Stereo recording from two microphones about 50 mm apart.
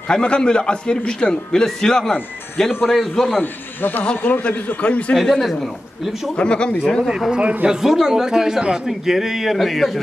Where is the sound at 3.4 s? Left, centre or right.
Left.